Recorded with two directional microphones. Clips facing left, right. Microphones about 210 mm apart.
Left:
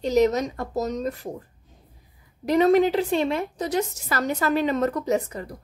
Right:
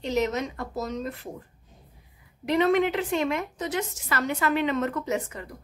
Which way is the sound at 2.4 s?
40° left (ahead or behind).